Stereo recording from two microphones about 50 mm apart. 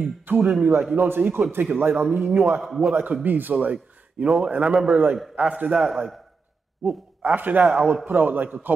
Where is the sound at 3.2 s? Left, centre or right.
Right.